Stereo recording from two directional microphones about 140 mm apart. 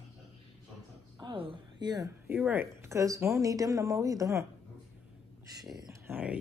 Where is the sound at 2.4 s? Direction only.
15° right (ahead or behind).